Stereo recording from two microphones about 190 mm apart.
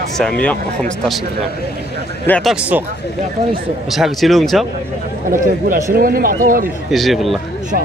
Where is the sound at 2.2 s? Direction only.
10° left (ahead or behind).